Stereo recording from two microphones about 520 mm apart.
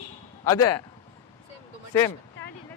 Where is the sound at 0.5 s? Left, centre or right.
Centre.